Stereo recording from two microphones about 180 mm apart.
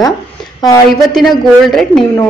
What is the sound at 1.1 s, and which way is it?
Speech, centre (ahead or behind).